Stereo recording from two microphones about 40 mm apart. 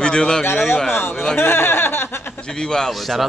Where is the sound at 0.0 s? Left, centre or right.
Left.